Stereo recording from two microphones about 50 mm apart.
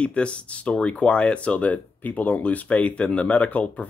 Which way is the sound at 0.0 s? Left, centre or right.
Left.